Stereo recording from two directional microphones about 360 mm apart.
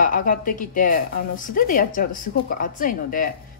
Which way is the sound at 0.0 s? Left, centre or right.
Left.